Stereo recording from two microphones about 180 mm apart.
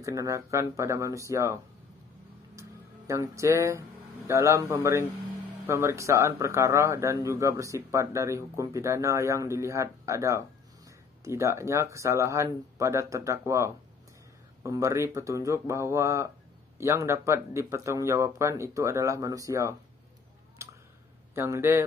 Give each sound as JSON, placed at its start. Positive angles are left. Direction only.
{"t": 0.0, "sound": "speech", "side_deg": -20}
{"t": 3.1, "sound": "speech", "side_deg": -15}
{"t": 20.6, "sound": "a sound", "side_deg": -15}
{"t": 21.4, "sound": "speech", "side_deg": -15}